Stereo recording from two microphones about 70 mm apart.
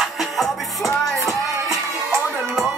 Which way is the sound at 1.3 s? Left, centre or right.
Right.